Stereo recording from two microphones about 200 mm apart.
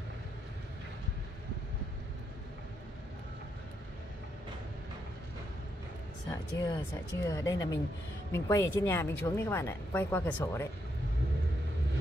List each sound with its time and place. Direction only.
6.6 s speech: 20° left (ahead or behind)